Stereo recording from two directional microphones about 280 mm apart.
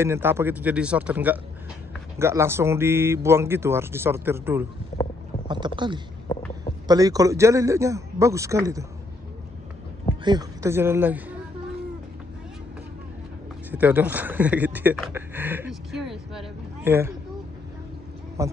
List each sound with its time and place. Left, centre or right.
0.0 s a man's voice: centre
6.3 s a sound: centre
6.9 s speech: centre
10.2 s speech: centre
13.7 s speech: centre
18.4 s speech: centre